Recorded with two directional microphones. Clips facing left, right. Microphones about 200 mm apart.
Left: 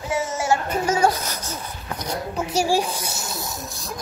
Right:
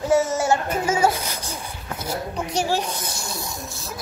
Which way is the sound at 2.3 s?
5° left (ahead or behind).